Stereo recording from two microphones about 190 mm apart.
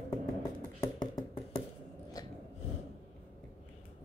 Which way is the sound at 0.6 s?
25° left (ahead or behind).